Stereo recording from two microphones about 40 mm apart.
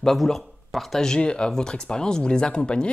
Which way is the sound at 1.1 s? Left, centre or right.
Left.